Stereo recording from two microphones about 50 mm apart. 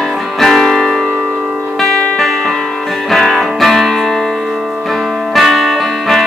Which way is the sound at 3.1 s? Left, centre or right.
Centre.